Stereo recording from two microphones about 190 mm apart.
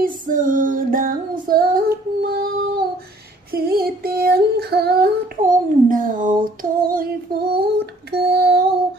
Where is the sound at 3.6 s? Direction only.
50° right (ahead or behind).